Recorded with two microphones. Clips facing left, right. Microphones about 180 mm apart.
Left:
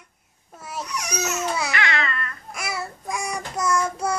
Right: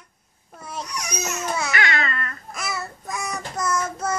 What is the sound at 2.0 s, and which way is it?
Babbling, 45° right (ahead or behind).